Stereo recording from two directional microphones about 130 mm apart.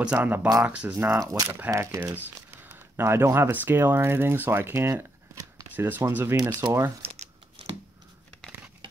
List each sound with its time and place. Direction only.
0.0 s speech: 10° right (ahead or behind)
1.2 s speech: 30° right (ahead or behind)
1.5 s speech: 20° right (ahead or behind)
6.3 s speech: 30° right (ahead or behind)
7.0 s crumpling: 50° right (ahead or behind)